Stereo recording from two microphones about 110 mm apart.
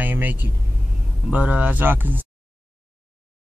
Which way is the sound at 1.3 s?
10° right (ahead or behind).